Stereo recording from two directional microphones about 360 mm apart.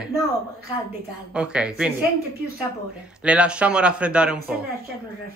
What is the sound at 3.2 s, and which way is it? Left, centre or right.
Speech, centre.